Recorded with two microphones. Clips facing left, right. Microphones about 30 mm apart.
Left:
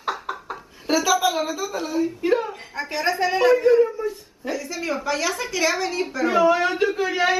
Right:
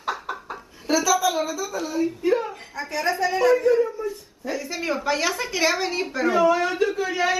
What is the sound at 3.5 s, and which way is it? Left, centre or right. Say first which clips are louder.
Speech: left 3 dB; left.